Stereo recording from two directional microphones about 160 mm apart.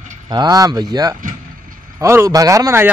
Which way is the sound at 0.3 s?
25° right (ahead or behind).